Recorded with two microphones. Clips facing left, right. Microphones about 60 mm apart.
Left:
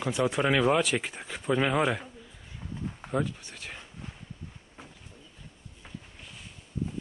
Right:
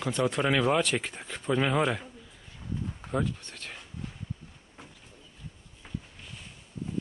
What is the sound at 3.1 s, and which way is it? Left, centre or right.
Speech, centre.